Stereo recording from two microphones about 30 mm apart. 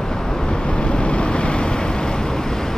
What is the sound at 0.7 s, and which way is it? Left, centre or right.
Vehicle, left.